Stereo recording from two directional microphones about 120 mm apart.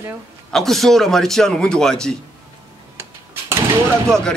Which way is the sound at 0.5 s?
5° left (ahead or behind).